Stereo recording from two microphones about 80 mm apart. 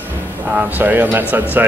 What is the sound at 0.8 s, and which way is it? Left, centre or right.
Speech, right.